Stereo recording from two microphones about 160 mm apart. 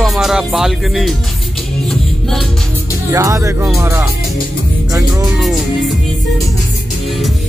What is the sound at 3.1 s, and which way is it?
Speech, 20° right (ahead or behind).